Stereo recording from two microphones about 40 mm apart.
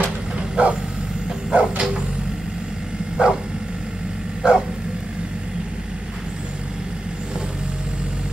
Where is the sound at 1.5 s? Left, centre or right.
Right.